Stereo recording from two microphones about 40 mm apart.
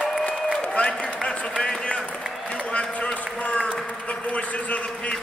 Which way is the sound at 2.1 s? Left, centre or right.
Centre.